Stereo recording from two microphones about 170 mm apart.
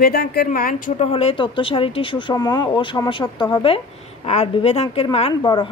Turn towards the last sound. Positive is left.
turn(degrees=30)  # may be behind; listen again after turning